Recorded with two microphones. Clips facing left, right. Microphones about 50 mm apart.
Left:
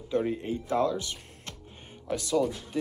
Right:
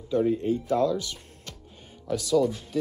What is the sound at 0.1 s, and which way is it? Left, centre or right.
Speech, left.